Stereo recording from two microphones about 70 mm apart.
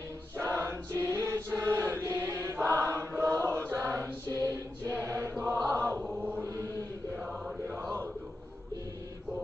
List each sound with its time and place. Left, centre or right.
0.4 s chant: right
3.7 s music: right
5.0 s chant: right